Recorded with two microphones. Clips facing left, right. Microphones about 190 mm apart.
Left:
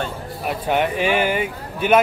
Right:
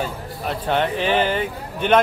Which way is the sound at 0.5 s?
10° left (ahead or behind).